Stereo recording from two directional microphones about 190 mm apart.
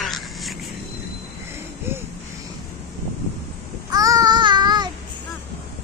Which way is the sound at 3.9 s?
20° right (ahead or behind).